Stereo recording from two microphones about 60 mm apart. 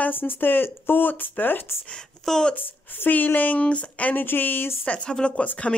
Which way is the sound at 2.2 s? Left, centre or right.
Centre.